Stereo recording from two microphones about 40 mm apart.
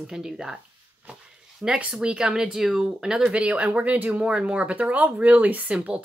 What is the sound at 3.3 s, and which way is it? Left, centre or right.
Speech, right.